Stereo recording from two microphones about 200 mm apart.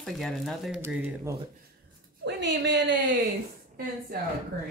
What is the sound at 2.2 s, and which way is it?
Speech, 60° right (ahead or behind).